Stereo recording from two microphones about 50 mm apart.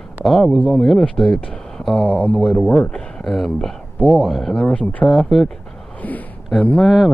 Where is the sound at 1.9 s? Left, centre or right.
Left.